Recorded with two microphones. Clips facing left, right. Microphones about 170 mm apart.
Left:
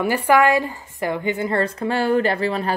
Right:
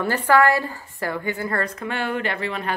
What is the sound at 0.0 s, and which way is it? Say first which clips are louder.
A woman's voice: left 2 dB; 10° left (ahead or behind).